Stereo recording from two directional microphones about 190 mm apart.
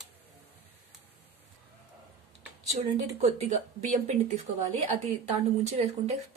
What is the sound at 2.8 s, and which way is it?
Speech, 35° right (ahead or behind).